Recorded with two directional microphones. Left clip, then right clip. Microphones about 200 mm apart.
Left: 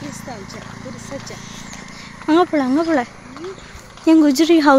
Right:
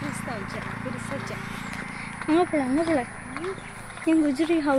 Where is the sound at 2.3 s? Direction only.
45° left (ahead or behind).